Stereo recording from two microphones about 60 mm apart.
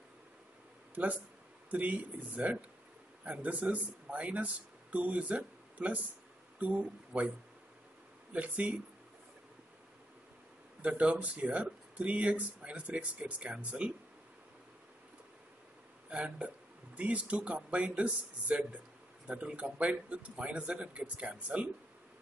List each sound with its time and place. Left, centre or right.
1.7 s speech: right
10.8 s speech: right
16.1 s speech: right